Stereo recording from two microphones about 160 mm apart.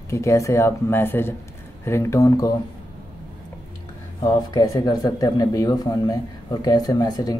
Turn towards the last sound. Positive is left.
turn(degrees=25)  # may be behind; listen again after turning